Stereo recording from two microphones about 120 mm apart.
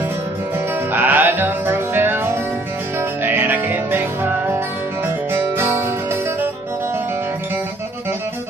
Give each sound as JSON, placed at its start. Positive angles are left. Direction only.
{"t": 0.9, "sound": "music", "side_deg": -15}
{"t": 3.3, "sound": "music", "side_deg": -15}
{"t": 5.3, "sound": "music", "side_deg": -20}